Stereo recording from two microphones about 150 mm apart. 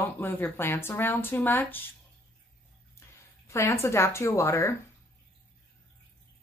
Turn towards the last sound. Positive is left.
turn(degrees=20)  # may be behind; listen again after turning